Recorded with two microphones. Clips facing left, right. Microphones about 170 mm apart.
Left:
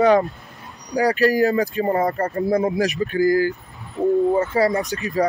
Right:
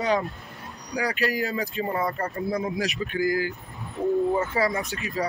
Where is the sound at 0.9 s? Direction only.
40° left (ahead or behind).